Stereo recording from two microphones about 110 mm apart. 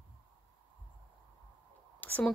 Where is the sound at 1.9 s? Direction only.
15° left (ahead or behind).